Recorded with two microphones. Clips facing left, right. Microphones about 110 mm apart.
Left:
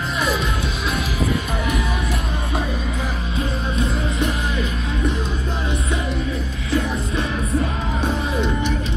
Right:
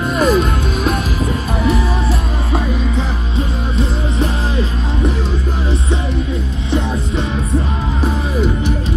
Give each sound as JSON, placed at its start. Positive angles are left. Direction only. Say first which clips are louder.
{"t": 0.2, "sound": "music", "louder": "right 9 dB", "side_deg": -45}
{"t": 4.2, "sound": "music", "louder": "right 6 dB", "side_deg": -30}